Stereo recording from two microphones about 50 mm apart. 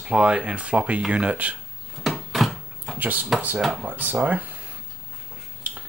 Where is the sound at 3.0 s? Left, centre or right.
Right.